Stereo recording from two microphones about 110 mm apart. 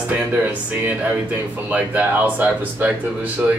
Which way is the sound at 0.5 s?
15° right (ahead or behind).